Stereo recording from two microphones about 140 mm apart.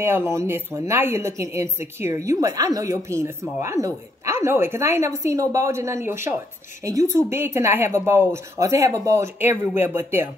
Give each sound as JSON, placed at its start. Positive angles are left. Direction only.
{"t": 0.0, "sound": "speech", "side_deg": -15}